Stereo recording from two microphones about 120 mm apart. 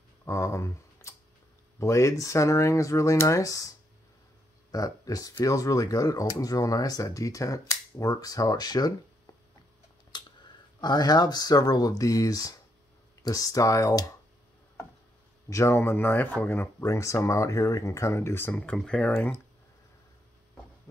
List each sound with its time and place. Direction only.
0.2 s speech: 25° left (ahead or behind)
10.1 s speech: 35° left (ahead or behind)
15.5 s speech: 20° left (ahead or behind)
18.5 s speech: 10° left (ahead or behind)
19.1 s speech: 20° left (ahead or behind)